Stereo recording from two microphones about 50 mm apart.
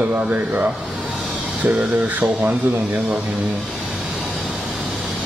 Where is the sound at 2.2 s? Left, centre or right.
Right.